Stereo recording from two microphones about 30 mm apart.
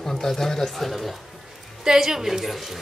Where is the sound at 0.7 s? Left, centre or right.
Centre.